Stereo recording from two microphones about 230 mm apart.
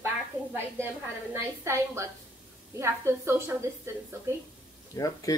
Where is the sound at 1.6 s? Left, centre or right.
Centre.